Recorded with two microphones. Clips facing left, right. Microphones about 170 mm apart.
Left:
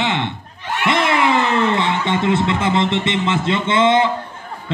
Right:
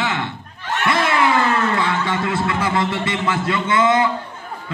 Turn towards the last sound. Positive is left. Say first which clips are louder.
# left 2 dB
turn(degrees=25)  # may be behind; listen again after turning